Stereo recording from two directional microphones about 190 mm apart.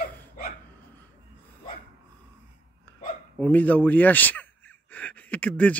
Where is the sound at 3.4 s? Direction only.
10° left (ahead or behind).